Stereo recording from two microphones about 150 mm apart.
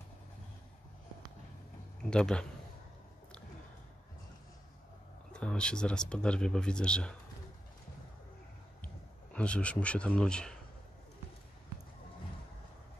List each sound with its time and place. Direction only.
2.0 s speech: 5° left (ahead or behind)
5.3 s speech: 5° left (ahead or behind)
8.8 s speech: 10° left (ahead or behind)